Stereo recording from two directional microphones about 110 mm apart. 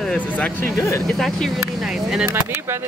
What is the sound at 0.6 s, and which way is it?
Speech, 25° left (ahead or behind).